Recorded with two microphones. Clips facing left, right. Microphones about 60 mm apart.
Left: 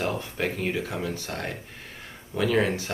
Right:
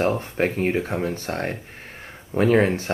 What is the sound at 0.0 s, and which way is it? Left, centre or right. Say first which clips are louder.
Speech: right 6 dB; right.